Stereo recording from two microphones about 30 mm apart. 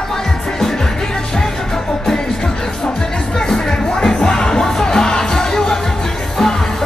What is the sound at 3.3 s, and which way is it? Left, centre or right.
Music, left.